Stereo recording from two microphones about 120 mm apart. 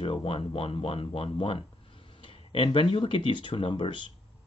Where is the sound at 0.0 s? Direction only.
50° left (ahead or behind).